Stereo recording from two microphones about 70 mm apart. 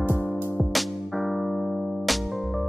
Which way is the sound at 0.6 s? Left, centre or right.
Centre.